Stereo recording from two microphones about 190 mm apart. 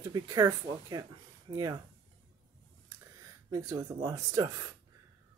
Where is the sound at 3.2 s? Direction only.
15° right (ahead or behind).